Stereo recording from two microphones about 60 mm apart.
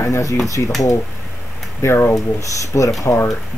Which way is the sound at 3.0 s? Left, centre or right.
Left.